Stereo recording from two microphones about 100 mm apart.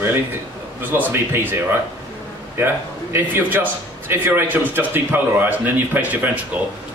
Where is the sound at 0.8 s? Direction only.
20° right (ahead or behind).